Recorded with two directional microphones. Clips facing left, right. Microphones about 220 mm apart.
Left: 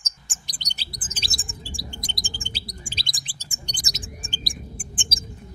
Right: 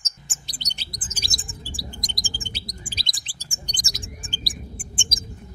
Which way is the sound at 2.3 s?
30° left (ahead or behind).